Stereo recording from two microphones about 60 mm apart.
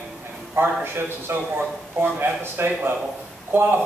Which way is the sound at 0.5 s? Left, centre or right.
Right.